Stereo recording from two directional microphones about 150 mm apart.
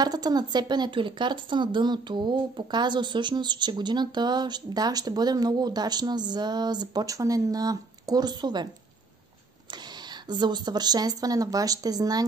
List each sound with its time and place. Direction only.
0.0 s a woman's voice: 25° right (ahead or behind)
10.2 s a woman's voice: 30° right (ahead or behind)